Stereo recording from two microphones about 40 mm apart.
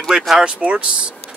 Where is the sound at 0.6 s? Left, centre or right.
Right.